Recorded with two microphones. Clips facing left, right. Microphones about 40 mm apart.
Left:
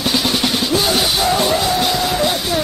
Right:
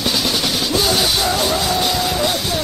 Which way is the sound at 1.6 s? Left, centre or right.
Centre.